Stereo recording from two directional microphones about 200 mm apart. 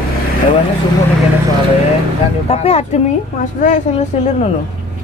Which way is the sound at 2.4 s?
30° left (ahead or behind).